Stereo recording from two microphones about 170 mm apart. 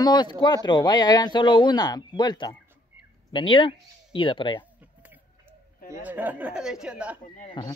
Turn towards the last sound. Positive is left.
turn(degrees=30)  # may be behind; listen again after turning